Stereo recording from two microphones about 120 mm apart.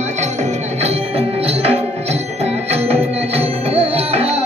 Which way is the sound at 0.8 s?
55° right (ahead or behind).